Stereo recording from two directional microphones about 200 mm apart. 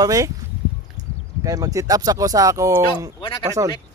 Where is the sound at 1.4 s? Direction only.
15° right (ahead or behind).